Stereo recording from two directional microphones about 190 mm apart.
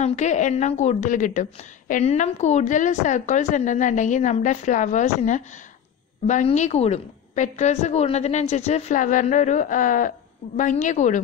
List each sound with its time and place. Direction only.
0.0 s a woman's voice: 40° left (ahead or behind)